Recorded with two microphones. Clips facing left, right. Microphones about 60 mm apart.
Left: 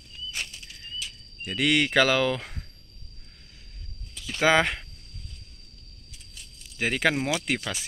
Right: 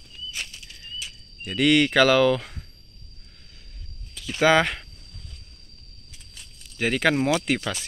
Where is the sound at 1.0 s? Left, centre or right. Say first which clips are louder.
Even; centre.